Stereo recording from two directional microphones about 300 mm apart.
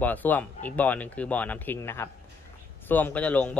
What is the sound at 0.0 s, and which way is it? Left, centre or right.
Speech, centre.